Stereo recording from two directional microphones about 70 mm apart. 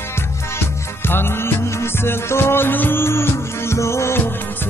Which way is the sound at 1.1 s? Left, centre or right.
Left.